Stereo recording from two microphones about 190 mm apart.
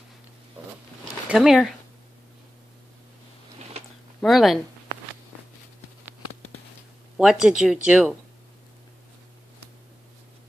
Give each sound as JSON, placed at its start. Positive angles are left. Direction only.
{"t": 1.3, "sound": "speech", "side_deg": 0}
{"t": 3.8, "sound": "a sound", "side_deg": -35}
{"t": 4.2, "sound": "speech", "side_deg": 0}
{"t": 7.2, "sound": "speech", "side_deg": -5}